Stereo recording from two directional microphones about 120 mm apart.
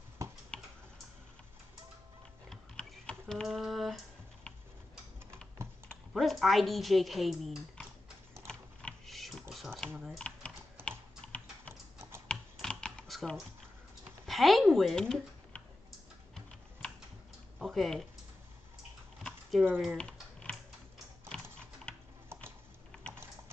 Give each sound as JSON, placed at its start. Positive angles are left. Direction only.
{"t": 0.2, "sound": "finger snapping", "side_deg": -25}
{"t": 2.5, "sound": "typing", "side_deg": 10}
{"t": 6.1, "sound": "a woman's voice", "side_deg": 0}
{"t": 8.5, "sound": "typing", "side_deg": 5}
{"t": 10.9, "sound": "typing", "side_deg": 10}
{"t": 17.6, "sound": "a sound", "side_deg": 0}
{"t": 19.2, "sound": "a sound", "side_deg": 10}
{"t": 19.8, "sound": "a woman's voice", "side_deg": 0}
{"t": 20.1, "sound": "typing", "side_deg": 10}